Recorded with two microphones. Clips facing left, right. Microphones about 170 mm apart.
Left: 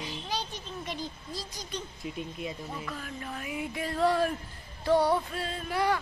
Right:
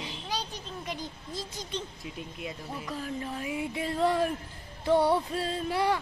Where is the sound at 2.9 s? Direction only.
30° right (ahead or behind).